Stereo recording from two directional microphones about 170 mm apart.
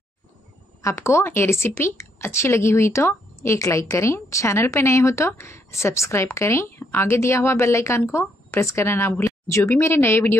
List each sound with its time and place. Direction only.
0.8 s a woman's voice: 15° left (ahead or behind)